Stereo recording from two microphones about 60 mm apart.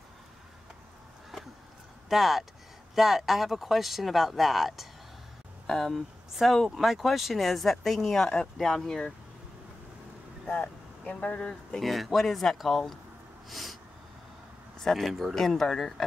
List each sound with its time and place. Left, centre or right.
1.3 s a sound: centre
2.0 s speech: centre
10.5 s speech: centre
11.8 s speech: centre
13.5 s a sound: centre
14.8 s speech: centre